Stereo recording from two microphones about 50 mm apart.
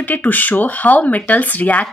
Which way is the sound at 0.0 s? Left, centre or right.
Left.